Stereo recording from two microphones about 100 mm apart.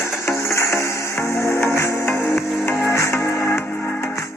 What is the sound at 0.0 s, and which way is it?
Music, 30° left (ahead or behind).